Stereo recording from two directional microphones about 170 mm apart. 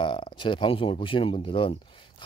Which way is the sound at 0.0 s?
30° left (ahead or behind).